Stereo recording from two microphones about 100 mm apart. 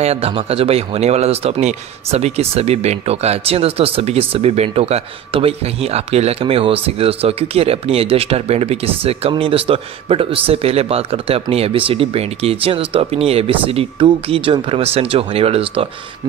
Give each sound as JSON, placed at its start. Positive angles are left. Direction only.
{"t": 0.0, "sound": "speech", "side_deg": -90}
{"t": 9.4, "sound": "speech", "side_deg": -70}
{"t": 13.9, "sound": "speech", "side_deg": -55}